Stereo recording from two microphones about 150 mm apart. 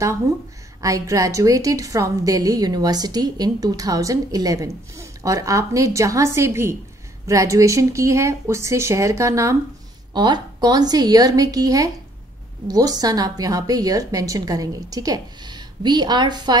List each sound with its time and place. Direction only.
0.7 s a woman's voice: 20° right (ahead or behind)